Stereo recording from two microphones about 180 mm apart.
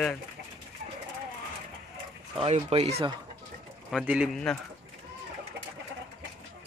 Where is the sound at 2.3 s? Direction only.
30° right (ahead or behind).